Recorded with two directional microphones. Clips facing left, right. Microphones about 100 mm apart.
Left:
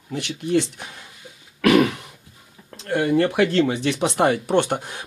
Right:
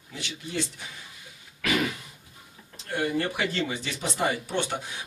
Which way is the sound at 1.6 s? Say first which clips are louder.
Left 11 dB; 65° left (ahead or behind).